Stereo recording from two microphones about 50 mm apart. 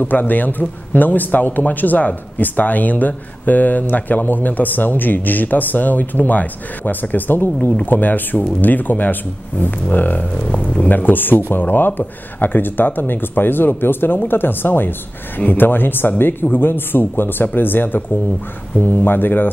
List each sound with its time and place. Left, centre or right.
0.0 s speech: left
10.4 s speech: centre
10.9 s speech: left